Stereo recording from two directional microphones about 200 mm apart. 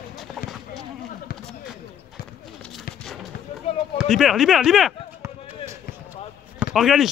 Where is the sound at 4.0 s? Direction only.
Centre (ahead or behind).